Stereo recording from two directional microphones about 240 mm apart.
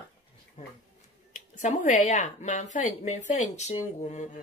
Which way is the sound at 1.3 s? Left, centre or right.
Left.